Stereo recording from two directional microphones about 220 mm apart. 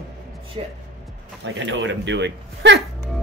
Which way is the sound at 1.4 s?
55° right (ahead or behind).